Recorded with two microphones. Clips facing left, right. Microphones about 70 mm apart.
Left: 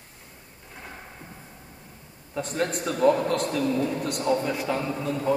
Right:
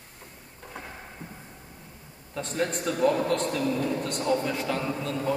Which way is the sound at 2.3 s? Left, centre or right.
Centre.